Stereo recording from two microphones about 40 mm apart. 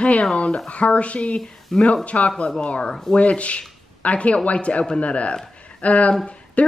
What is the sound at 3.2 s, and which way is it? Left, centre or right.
A man's voice, left.